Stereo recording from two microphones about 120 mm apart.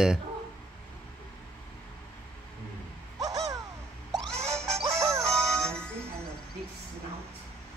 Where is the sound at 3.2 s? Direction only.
35° right (ahead or behind).